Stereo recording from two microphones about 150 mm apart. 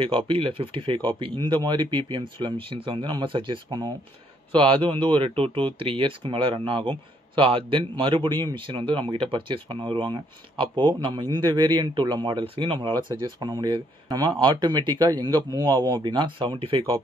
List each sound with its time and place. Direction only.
0.0 s a man's voice: 35° right (ahead or behind)